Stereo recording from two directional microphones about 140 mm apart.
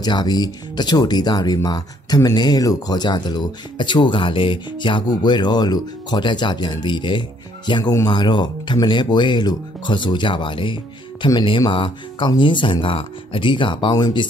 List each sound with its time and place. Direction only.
0.0 s speech: 30° left (ahead or behind)